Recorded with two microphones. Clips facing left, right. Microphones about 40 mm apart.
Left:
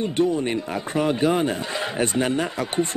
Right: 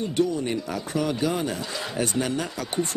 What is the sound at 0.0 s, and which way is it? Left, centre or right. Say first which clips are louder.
Speech: left 3 dB; left.